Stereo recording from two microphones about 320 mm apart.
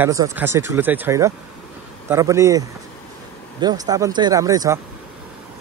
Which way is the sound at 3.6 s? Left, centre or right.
Centre.